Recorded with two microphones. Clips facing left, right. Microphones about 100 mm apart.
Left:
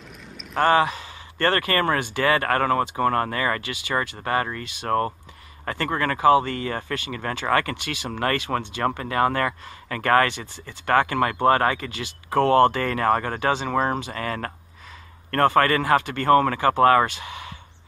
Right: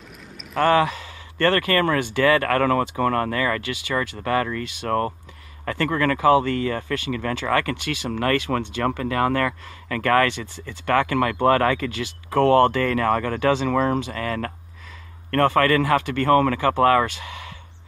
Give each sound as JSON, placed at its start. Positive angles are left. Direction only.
{"t": 0.6, "sound": "speech", "side_deg": 25}